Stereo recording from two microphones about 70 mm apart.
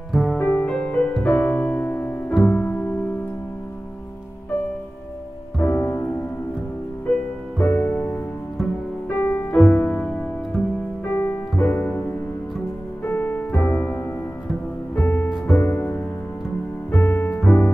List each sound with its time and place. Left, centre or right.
0.1 s music: centre
0.4 s music: left
0.7 s music: left
2.4 s piano: left
5.6 s music: left
7.5 s music: left
9.2 s music: left; by 10.6 s centre
11.1 s music: left